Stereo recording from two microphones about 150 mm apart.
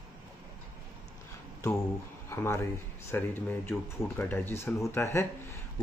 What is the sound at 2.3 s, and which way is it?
A man's voice, 15° left (ahead or behind).